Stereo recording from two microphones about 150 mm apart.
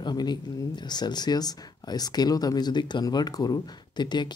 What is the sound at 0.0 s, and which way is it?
Speech, 30° left (ahead or behind).